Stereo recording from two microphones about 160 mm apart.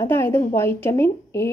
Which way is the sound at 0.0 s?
15° left (ahead or behind).